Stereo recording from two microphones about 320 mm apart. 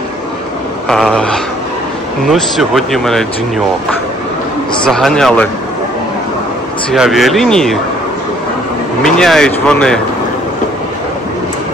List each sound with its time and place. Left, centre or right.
0.8 s speech: centre
4.8 s speech: centre
6.9 s speech: centre
9.0 s speech: centre